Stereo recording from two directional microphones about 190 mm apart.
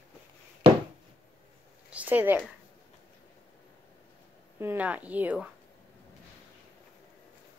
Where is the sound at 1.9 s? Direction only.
10° right (ahead or behind).